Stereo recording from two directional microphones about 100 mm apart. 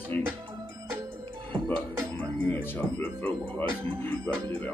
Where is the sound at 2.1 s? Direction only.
20° left (ahead or behind).